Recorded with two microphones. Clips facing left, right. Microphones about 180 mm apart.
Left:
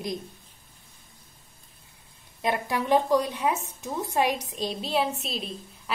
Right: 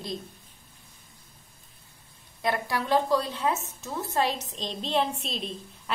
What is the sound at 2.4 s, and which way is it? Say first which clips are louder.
A woman's voice: left 1 dB; 20° left (ahead or behind).